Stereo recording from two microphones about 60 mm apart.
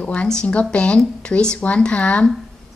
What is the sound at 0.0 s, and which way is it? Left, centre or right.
Speech, centre.